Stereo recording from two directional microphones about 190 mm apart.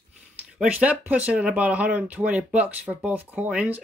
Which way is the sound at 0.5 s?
5° right (ahead or behind).